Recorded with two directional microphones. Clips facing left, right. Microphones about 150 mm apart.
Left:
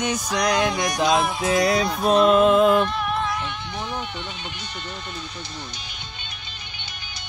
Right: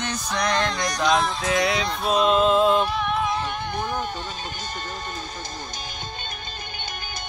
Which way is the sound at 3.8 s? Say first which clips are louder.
Right 2 dB; 45° right (ahead or behind).